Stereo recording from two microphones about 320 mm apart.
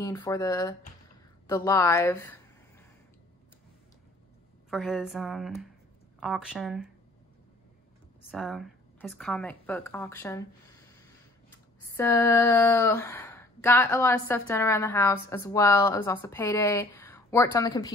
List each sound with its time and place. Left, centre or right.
0.0 s speech: centre
4.6 s speech: centre
8.3 s speech: centre
12.0 s speech: centre